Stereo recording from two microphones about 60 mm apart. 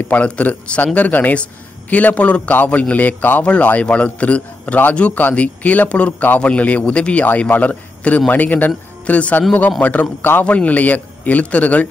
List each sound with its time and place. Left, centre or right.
0.1 s a man's voice: left